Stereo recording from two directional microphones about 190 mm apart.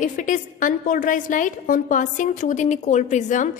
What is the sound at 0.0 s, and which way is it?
A woman's voice, 45° left (ahead or behind).